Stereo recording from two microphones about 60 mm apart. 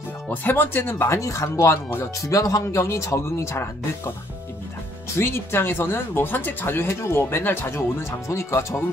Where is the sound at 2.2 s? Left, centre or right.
Left.